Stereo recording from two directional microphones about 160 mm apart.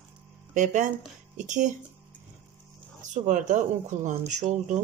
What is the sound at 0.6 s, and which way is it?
Speech, 50° right (ahead or behind).